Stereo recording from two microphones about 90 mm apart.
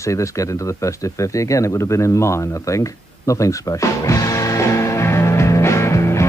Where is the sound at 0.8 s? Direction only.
35° left (ahead or behind).